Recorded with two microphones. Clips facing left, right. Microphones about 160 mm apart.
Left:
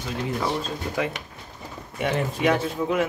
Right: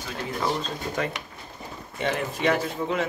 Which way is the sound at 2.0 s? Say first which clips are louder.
Left 2 dB; 10° left (ahead or behind).